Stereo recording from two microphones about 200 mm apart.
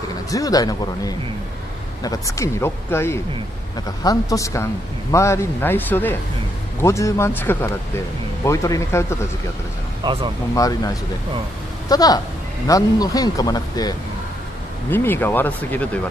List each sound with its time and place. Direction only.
0.3 s speech: 15° left (ahead or behind)
10.0 s speech: 25° right (ahead or behind)
10.5 s speech: 15° left (ahead or behind)